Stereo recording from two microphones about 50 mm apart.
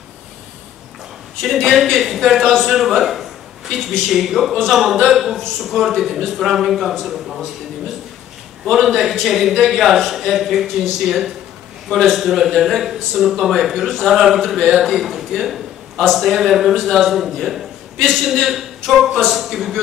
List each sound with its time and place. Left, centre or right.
1.4 s a man's voice: centre
8.6 s speech: centre